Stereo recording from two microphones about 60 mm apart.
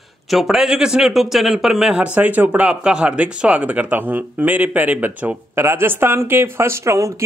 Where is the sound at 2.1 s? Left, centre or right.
Right.